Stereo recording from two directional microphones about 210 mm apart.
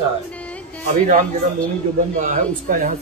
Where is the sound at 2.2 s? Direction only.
35° right (ahead or behind).